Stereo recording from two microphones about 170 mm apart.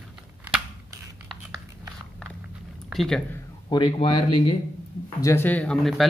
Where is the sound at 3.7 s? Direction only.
30° left (ahead or behind).